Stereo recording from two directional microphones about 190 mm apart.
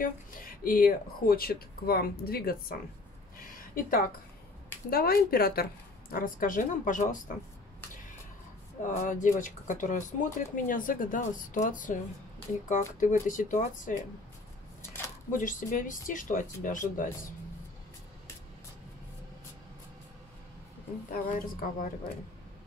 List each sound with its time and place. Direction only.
0.0 s speech: 50° left (ahead or behind)
3.3 s a sound: 50° left (ahead or behind)
4.9 s speech: 50° left (ahead or behind)
8.8 s speech: 40° left (ahead or behind)
15.3 s speech: 45° left (ahead or behind)
21.1 s speech: 50° left (ahead or behind)